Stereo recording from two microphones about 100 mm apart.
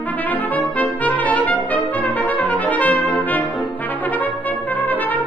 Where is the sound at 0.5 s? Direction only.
15° left (ahead or behind).